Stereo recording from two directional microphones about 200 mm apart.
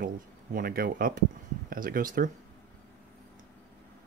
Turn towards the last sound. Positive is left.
turn(degrees=-40)  # may be behind; listen again after turning